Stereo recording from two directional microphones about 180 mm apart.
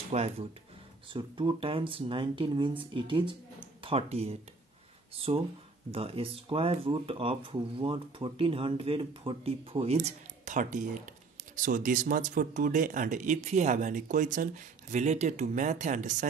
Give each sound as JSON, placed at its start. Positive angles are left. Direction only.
{"t": 0.1, "sound": "speech", "side_deg": -35}